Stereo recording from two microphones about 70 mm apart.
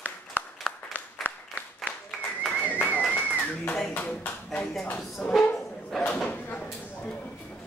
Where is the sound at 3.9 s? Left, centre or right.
Left.